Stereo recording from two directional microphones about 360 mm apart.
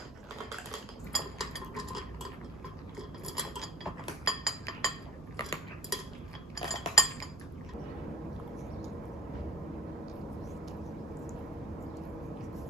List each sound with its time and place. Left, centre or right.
0.5 s cutlery: centre